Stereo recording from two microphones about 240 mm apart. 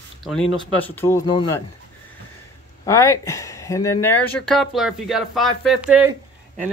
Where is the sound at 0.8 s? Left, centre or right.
Centre.